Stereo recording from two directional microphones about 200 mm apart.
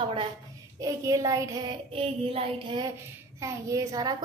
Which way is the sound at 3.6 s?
15° right (ahead or behind).